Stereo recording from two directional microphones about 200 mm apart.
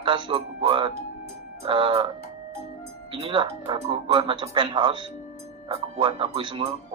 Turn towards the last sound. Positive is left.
turn(degrees=-25)  # may be behind; listen again after turning